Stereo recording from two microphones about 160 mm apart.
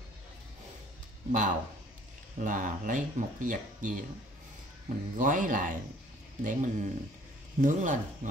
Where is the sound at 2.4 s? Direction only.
55° right (ahead or behind).